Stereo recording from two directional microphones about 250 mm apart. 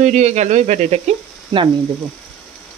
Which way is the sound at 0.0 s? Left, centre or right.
Right.